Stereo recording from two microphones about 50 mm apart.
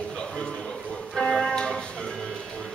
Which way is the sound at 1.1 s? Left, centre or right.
Centre.